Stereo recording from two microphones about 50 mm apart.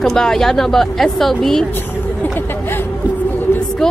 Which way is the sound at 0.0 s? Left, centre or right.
Centre.